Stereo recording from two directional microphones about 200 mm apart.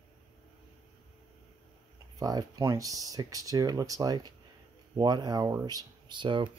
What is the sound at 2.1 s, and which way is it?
Speech, 20° right (ahead or behind).